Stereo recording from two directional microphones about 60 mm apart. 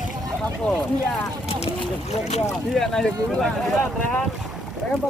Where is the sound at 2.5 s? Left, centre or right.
Centre.